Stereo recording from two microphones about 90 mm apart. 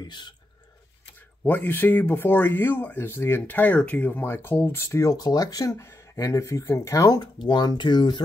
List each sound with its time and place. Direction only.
0.0 s speech: 55° left (ahead or behind)
1.4 s speech: 20° left (ahead or behind)
5.0 s speech: 45° left (ahead or behind)
7.2 s speech: 55° left (ahead or behind)